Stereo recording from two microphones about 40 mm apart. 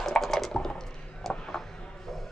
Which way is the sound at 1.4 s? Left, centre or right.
Centre.